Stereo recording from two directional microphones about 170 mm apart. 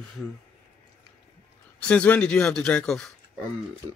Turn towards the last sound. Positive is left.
turn(degrees=5)  # may be behind; listen again after turning